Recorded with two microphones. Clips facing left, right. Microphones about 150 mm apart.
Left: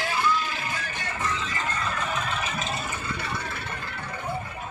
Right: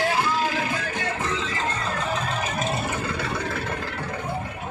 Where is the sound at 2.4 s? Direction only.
50° right (ahead or behind).